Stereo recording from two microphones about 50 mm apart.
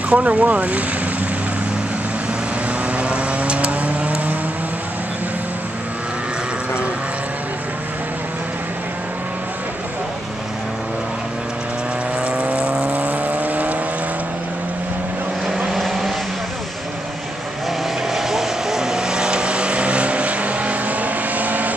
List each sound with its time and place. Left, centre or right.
0.1 s speech: right
3.0 s vehicle: right
12.3 s vehicle: right
15.4 s vehicle: centre
18.1 s vehicle: centre; by 21.7 s right